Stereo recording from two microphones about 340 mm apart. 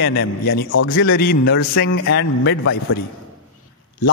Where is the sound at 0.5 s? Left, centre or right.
Left.